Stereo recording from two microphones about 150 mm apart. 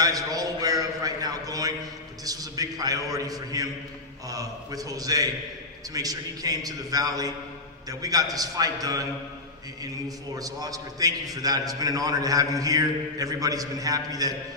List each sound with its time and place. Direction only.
0.0 s a sound: 25° right (ahead or behind)
2.2 s a man's voice: 25° right (ahead or behind)
10.0 s a man's voice: 25° right (ahead or behind)